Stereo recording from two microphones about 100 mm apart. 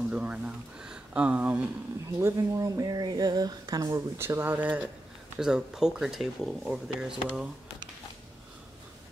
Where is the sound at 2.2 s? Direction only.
30° right (ahead or behind).